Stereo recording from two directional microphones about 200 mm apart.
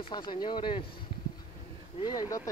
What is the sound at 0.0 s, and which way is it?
Speech, 25° left (ahead or behind).